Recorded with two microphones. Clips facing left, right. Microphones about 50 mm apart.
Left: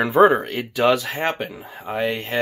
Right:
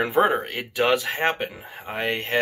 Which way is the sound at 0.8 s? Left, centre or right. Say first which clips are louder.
Left 2 dB; right.